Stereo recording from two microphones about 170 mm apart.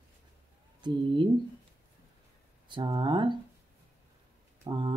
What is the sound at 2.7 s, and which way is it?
Speech, 25° right (ahead or behind).